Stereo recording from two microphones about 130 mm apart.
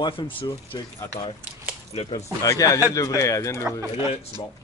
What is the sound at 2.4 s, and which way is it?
Speech, 25° left (ahead or behind).